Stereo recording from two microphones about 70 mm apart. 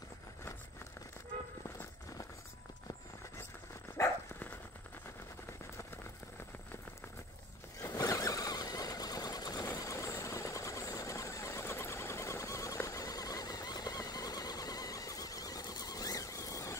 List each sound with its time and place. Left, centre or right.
3.9 s dog: left
7.9 s vehicle: left
9.7 s sewing machine: left